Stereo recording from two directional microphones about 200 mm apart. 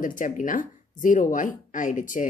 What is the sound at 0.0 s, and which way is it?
Speech, 40° left (ahead or behind).